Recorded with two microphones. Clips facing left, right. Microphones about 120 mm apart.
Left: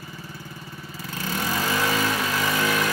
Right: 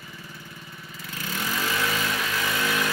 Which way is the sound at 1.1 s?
40° left (ahead or behind).